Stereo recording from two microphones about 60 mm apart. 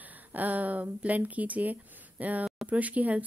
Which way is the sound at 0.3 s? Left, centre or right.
Right.